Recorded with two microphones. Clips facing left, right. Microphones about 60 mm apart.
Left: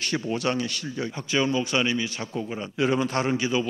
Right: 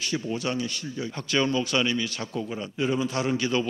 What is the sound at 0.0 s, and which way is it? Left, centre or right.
Speech, left.